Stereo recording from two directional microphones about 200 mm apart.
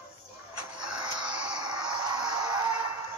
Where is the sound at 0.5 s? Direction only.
20° right (ahead or behind).